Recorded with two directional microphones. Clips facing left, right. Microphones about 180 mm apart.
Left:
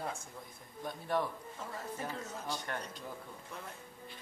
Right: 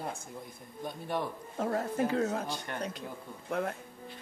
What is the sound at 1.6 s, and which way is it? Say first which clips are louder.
Speech: right 12 dB; 70° right (ahead or behind).